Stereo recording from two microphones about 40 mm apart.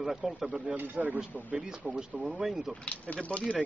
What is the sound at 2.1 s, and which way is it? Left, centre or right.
Speech, right.